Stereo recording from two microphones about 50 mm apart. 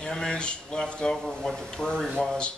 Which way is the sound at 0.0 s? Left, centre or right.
Centre.